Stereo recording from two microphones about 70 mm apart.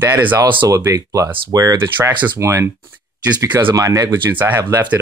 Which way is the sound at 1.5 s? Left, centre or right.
Right.